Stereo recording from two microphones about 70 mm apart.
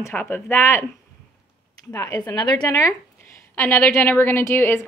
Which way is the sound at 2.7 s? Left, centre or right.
Left.